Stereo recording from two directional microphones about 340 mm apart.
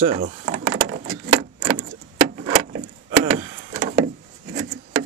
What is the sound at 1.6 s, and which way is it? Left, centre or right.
Vehicle, centre.